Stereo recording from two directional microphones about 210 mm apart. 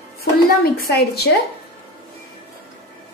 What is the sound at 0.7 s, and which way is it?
Speech, 50° left (ahead or behind).